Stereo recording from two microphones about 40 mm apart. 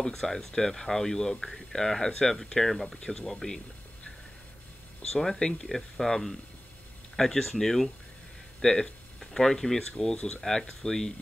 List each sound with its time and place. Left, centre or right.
0.1 s speech: centre
3.0 s speech: left
3.3 s speech: centre
5.1 s speech: centre
5.4 s speech: left
5.7 s speech: centre
8.5 s speech: left
9.2 s speech: centre
10.1 s speech: left
10.4 s speech: centre